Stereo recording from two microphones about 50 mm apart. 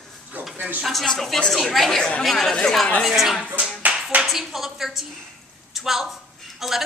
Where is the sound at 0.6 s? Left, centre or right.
Right.